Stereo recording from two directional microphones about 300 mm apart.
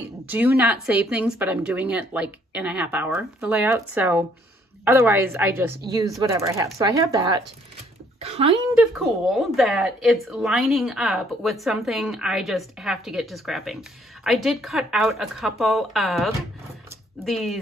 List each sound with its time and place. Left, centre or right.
0.3 s speech: centre
8.7 s speech: centre